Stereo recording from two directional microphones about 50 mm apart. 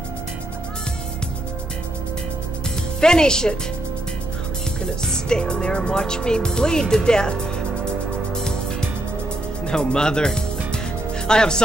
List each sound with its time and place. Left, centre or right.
3.0 s speech: centre
5.0 s speech: centre
9.7 s speech: centre